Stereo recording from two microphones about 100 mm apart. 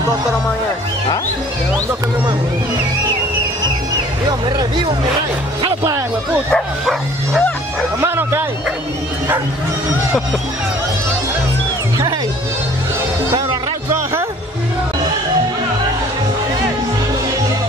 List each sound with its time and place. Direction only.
4.3 s speech: 45° right (ahead or behind)
6.5 s speech: 5° left (ahead or behind)
8.0 s speech: 25° right (ahead or behind)